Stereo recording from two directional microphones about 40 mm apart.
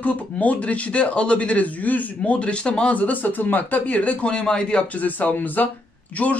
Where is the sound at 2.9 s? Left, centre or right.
Left.